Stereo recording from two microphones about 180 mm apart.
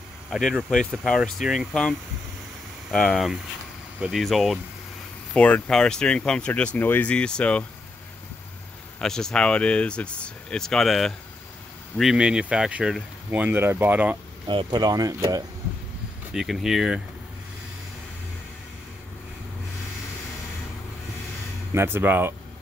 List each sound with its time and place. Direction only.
0.3 s speech: centre (ahead or behind)
9.0 s speech: 5° left (ahead or behind)
14.5 s speech: 25° right (ahead or behind)
16.3 s speech: centre (ahead or behind)
21.7 s speech: 10° right (ahead or behind)